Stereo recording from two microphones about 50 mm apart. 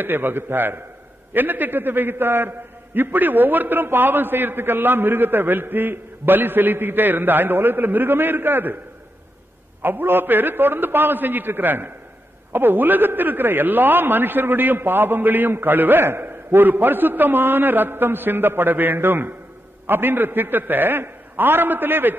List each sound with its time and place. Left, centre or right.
0.0 s a man's voice: right
9.8 s a man's voice: right